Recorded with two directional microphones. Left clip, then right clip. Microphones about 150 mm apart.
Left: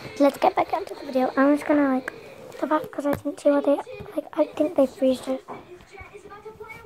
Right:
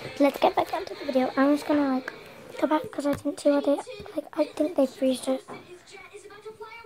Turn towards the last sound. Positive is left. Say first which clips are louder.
# left 4 dB
turn(degrees=0)  # may be behind; listen again after turning